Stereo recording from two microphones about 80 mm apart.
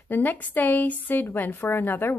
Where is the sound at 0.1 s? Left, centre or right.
Left.